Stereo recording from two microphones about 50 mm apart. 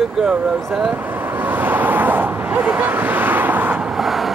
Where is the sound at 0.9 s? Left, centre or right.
Right.